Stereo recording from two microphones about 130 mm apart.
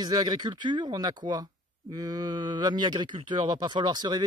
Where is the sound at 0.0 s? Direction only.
30° right (ahead or behind).